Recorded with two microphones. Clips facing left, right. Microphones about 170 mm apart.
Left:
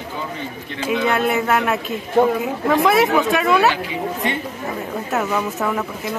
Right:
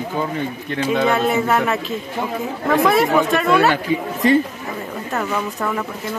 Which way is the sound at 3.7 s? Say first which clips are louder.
Right 3 dB; 40° right (ahead or behind).